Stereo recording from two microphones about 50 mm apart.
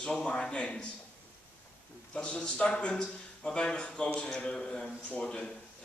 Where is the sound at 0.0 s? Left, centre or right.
Centre.